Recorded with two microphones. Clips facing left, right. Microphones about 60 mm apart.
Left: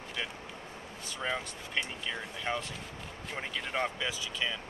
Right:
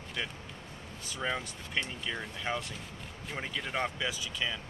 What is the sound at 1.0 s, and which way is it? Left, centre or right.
Speech, centre.